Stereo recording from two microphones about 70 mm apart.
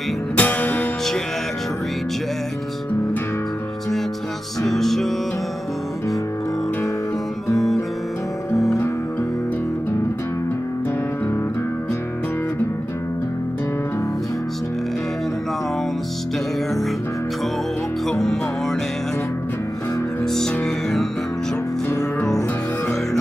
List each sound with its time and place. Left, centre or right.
0.4 s music: left
4.6 s music: centre
7.5 s music: centre
18.0 s music: centre
20.2 s music: centre